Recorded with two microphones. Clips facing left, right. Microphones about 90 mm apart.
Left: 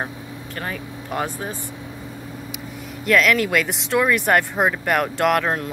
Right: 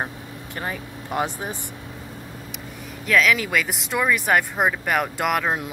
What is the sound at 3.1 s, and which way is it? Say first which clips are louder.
Speech: left 2 dB; centre (ahead or behind).